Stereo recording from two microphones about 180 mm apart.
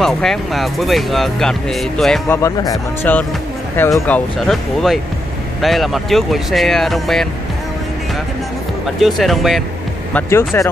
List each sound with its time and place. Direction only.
0.0 s speech: centre (ahead or behind)
2.2 s speech: 15° left (ahead or behind)
9.0 s speech: centre (ahead or behind)
10.1 s speech: 15° left (ahead or behind)